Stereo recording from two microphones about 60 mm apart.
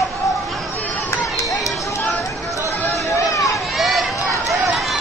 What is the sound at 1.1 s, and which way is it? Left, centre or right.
Run, left.